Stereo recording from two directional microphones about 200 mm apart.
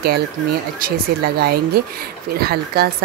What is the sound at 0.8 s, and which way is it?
Speech, 50° right (ahead or behind).